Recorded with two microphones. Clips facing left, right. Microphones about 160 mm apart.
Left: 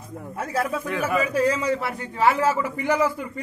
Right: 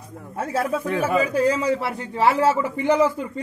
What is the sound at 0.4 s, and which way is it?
A man's voice, 30° right (ahead or behind).